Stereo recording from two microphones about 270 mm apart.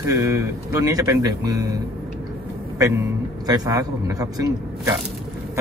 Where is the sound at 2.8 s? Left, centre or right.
Centre.